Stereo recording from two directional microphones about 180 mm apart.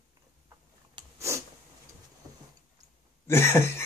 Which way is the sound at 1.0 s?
30° right (ahead or behind).